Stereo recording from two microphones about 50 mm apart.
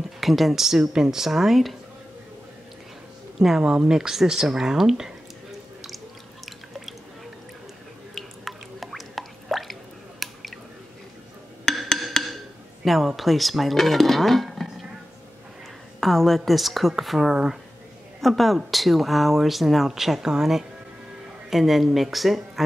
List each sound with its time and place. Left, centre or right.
0.2 s speech: centre
3.3 s speech: centre
3.6 s speech: centre
8.1 s drip: centre
12.8 s speech: centre
16.0 s speech: centre
18.2 s speech: centre